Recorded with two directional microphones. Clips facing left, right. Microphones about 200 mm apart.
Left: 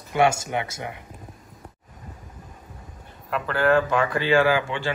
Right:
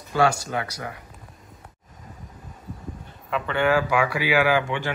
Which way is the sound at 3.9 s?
10° right (ahead or behind).